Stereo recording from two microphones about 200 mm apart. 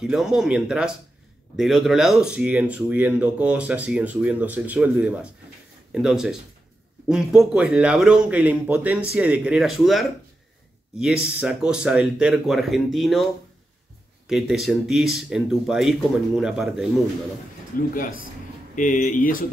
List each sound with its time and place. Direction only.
0.0 s speech: centre (ahead or behind)
11.2 s speech: 5° right (ahead or behind)
17.7 s speech: 45° left (ahead or behind)